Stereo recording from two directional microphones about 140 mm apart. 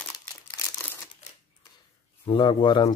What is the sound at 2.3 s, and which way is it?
Speech, 35° left (ahead or behind).